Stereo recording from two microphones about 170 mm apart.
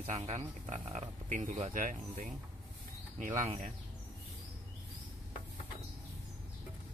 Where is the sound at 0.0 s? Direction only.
45° right (ahead or behind).